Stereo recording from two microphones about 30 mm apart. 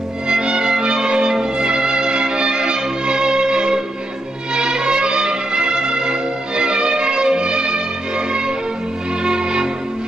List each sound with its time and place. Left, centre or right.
0.3 s music: right
8.3 s church bell: right
9.2 s music: right